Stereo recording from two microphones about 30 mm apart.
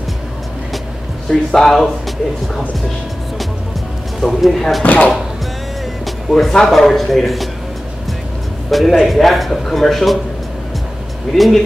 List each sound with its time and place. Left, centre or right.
1.3 s speech: centre
4.2 s speech: centre
4.8 s speech: left
6.3 s speech: centre
8.6 s a man's voice: centre
11.3 s speech: centre